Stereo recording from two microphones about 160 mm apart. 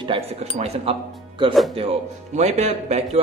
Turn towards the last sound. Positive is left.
turn(degrees=-45)  # may be behind; listen again after turning